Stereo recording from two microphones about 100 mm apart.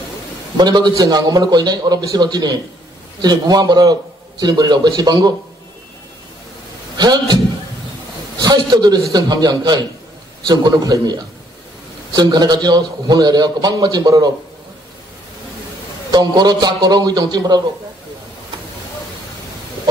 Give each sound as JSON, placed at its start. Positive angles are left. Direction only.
{"t": 0.6, "sound": "a man's voice", "side_deg": -45}
{"t": 7.0, "sound": "a man's voice", "side_deg": -45}
{"t": 8.4, "sound": "a man's voice", "side_deg": -45}
{"t": 12.2, "sound": "a man's voice", "side_deg": -45}
{"t": 16.1, "sound": "a man's voice", "side_deg": -45}